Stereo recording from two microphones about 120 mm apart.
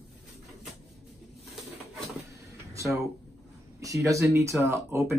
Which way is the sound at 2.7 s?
25° right (ahead or behind).